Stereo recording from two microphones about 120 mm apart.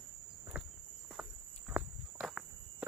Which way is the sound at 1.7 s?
5° right (ahead or behind).